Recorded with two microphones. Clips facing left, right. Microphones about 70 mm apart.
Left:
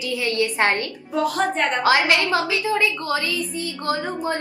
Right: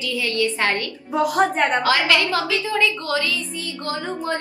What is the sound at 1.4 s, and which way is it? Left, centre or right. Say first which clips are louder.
Speech: right 6 dB; right.